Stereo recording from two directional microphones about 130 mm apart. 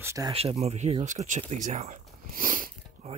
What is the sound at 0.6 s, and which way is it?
Speech, 55° right (ahead or behind).